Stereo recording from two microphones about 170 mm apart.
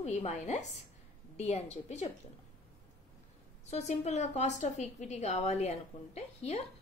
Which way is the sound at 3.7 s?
45° left (ahead or behind).